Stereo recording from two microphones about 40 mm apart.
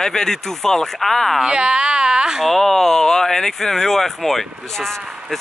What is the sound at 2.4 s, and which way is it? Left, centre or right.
Speech, centre.